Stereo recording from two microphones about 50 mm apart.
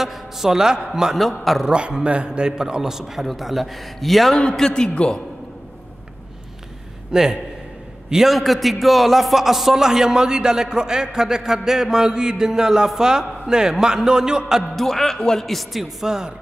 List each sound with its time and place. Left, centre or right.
0.0 s a man's voice: centre
1.1 s speech: centre
1.7 s a man's voice: centre
4.6 s a man's voice: centre
7.1 s a man's voice: centre
8.1 s a man's voice: centre
14.8 s speech: centre